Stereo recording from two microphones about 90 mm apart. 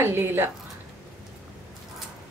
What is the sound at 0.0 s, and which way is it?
Speech, 25° right (ahead or behind).